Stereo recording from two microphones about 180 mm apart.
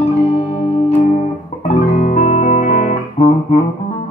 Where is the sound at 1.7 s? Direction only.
35° left (ahead or behind).